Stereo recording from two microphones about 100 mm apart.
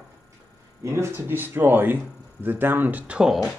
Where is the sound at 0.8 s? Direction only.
25° right (ahead or behind).